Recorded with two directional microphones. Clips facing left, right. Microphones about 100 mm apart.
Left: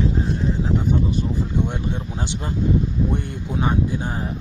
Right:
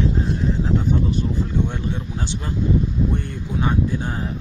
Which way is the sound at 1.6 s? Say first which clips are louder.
Even; 15° left (ahead or behind).